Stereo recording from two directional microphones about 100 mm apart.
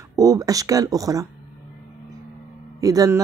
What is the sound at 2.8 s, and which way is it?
Speech, 35° right (ahead or behind).